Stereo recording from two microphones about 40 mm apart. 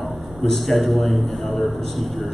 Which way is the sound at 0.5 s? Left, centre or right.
Centre.